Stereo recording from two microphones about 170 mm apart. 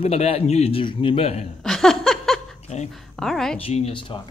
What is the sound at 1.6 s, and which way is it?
Laughter, centre (ahead or behind).